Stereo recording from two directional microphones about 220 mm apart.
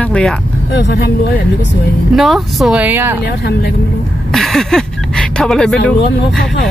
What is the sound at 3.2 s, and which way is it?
Speech, 45° left (ahead or behind).